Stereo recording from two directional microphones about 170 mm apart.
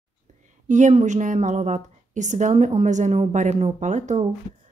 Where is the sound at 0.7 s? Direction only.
45° right (ahead or behind).